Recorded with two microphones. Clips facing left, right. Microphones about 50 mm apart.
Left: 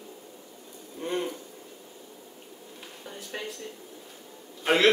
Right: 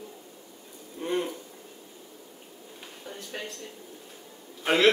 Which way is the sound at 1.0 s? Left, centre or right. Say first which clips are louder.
Right 1 dB; centre.